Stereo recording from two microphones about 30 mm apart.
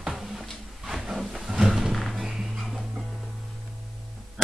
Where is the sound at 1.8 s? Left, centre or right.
Centre.